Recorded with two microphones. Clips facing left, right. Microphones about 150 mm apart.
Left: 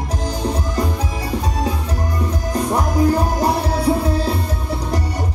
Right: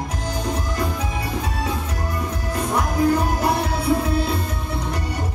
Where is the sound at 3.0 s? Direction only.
35° left (ahead or behind).